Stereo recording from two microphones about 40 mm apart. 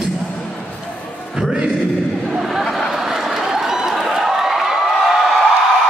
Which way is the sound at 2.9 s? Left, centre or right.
Centre.